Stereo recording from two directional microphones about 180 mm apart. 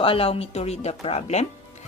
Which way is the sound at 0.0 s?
30° left (ahead or behind).